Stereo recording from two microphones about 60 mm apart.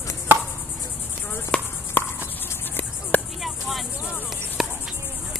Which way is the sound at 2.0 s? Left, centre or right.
Left.